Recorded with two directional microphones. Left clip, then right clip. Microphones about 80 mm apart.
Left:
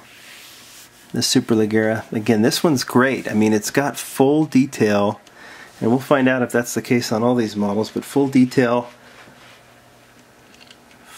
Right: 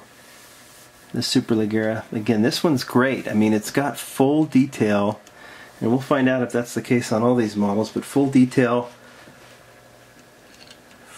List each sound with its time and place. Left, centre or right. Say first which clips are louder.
1.1 s speech: left 3 dB; left
5.8 s speech: left 3 dB; left
7.0 s speech: even; left